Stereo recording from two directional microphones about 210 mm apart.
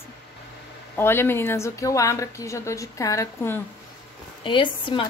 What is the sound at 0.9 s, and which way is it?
A woman's voice, 10° left (ahead or behind).